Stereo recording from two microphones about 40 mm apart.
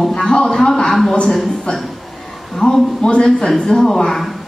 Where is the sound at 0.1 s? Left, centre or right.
Centre.